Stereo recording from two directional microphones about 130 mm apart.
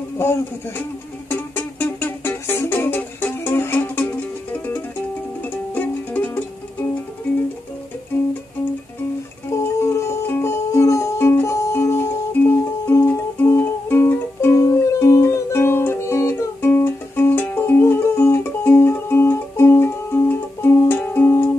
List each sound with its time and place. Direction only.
0.2 s a sound: 20° left (ahead or behind)
1.3 s music: 15° left (ahead or behind)
5.5 s music: 15° left (ahead or behind)
9.6 s music: 20° left (ahead or behind)